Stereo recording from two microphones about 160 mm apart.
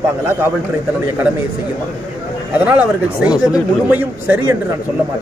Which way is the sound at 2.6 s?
10° right (ahead or behind).